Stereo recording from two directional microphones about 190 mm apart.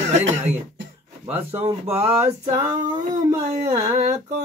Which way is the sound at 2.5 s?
20° right (ahead or behind).